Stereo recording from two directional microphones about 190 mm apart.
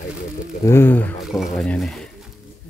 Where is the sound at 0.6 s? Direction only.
15° left (ahead or behind).